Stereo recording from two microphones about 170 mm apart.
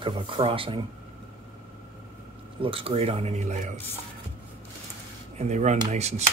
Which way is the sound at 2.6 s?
35° right (ahead or behind).